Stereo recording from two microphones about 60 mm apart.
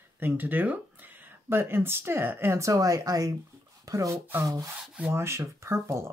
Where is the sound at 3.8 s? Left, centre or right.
Right.